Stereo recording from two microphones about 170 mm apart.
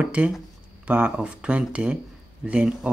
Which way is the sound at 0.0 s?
5° right (ahead or behind).